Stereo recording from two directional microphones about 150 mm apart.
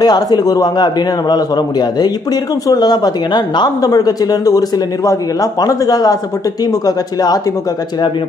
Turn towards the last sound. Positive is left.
turn(degrees=25)  # may be behind; listen again after turning